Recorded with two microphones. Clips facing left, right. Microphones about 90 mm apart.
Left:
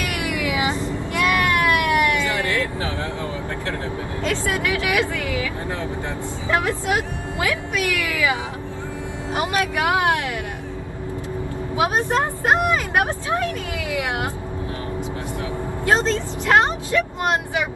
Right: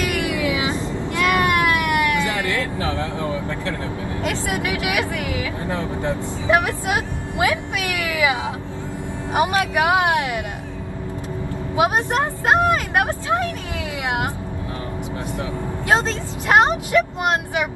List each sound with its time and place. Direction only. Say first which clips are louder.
0.7 s baby cry: right 1 dB; 20° right (ahead or behind)
4.2 s vehicle: left 1 dB; 20° right (ahead or behind)
11.7 s vehicle: right 1 dB; 20° right (ahead or behind)
13.9 s a sound: right 1 dB; 20° right (ahead or behind)
15.9 s vehicle: left 1 dB; 20° right (ahead or behind)